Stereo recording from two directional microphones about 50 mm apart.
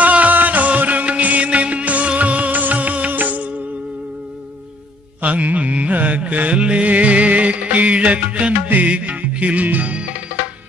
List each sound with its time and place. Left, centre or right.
0.0 s music: right
5.2 s music: right